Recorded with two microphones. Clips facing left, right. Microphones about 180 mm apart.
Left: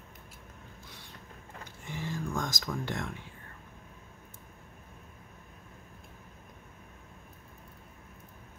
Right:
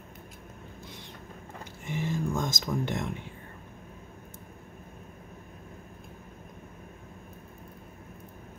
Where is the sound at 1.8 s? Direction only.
20° right (ahead or behind).